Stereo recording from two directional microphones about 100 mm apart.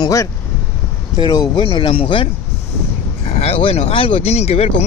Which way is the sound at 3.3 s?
85° left.